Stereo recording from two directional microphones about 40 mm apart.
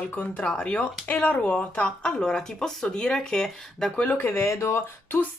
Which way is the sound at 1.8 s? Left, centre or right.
Left.